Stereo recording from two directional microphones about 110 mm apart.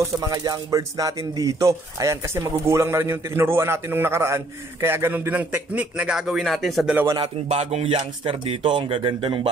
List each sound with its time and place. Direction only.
0.0 s speech: 35° right (ahead or behind); by 7.0 s centre (ahead or behind)
7.4 s speech: 70° right (ahead or behind)
8.2 s speech: 50° right (ahead or behind)